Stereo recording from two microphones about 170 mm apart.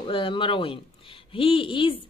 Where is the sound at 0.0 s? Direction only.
30° left (ahead or behind).